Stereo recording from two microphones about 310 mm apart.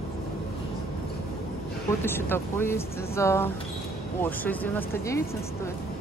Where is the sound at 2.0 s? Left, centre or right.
Centre.